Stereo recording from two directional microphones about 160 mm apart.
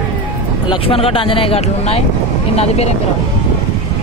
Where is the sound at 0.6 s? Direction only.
35° left (ahead or behind).